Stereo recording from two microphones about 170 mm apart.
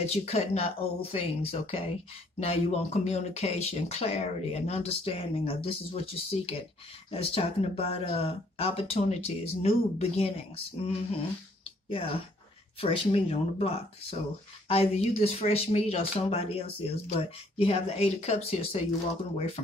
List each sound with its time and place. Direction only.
0.0 s speech: 40° left (ahead or behind)
12.8 s speech: 35° left (ahead or behind)